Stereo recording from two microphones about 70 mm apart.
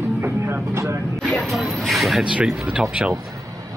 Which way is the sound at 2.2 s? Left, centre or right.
Centre.